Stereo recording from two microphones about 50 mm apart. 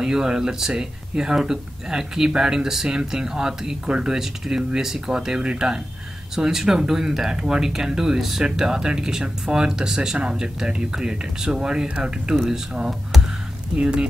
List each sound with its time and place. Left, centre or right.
0.0 s speech: centre